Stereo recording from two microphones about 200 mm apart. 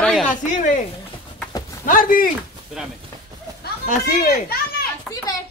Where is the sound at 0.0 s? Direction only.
5° left (ahead or behind).